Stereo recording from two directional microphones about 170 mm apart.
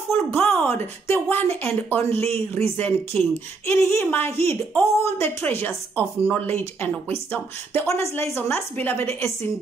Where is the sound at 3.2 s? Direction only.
15° left (ahead or behind).